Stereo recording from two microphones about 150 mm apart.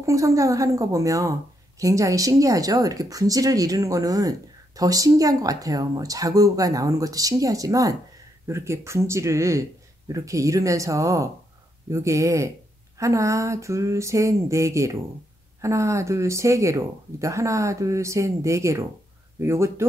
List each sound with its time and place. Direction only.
0.0 s speech: 20° right (ahead or behind)